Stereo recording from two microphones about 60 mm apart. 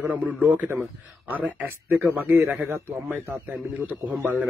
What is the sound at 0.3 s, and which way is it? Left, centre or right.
A man's voice, right.